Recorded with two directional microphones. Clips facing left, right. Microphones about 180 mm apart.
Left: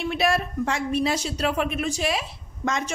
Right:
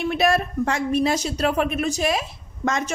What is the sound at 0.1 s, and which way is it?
A woman's voice, 45° right (ahead or behind).